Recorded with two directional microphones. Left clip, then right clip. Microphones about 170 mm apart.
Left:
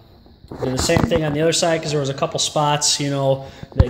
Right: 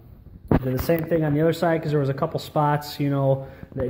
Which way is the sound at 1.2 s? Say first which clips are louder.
Left 3 dB; 10° right (ahead or behind).